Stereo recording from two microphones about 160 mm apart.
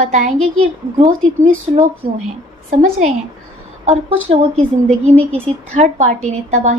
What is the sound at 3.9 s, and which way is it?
Speech, 45° right (ahead or behind).